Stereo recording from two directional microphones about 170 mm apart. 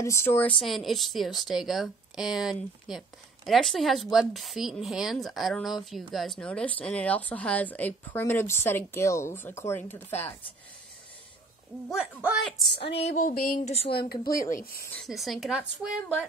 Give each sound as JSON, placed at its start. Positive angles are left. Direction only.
{"t": 0.0, "sound": "speech", "side_deg": 15}
{"t": 0.6, "sound": "a woman's voice", "side_deg": 0}
{"t": 11.9, "sound": "a woman's voice", "side_deg": -5}
{"t": 12.8, "sound": "a sound", "side_deg": 35}
{"t": 13.2, "sound": "speech", "side_deg": 55}
{"t": 14.5, "sound": "speech", "side_deg": 60}
{"t": 14.8, "sound": "speech", "side_deg": 10}
{"t": 15.0, "sound": "a woman's voice", "side_deg": 0}